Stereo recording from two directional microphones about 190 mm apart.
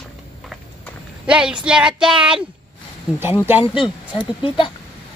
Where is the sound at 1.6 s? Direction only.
5° right (ahead or behind).